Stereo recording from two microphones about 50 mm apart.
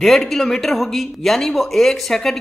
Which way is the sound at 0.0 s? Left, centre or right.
Centre.